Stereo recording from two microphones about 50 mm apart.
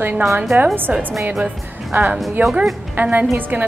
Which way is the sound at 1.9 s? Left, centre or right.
Right.